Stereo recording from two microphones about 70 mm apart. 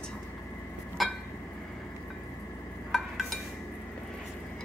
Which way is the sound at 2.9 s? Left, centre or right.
Centre.